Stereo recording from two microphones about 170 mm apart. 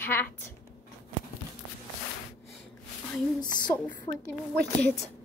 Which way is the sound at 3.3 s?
25° left (ahead or behind).